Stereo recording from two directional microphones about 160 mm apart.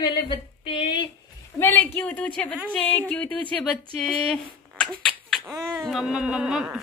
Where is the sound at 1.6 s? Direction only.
10° left (ahead or behind).